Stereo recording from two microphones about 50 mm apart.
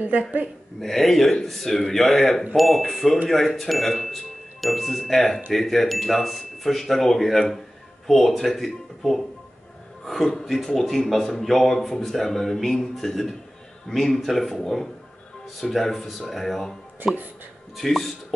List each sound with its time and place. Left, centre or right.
0.0 s a woman's voice: right
0.7 s speech: centre
17.0 s a woman's voice: right
17.7 s speech: centre